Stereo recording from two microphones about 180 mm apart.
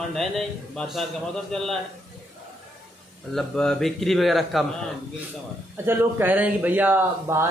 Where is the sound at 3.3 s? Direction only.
5° left (ahead or behind).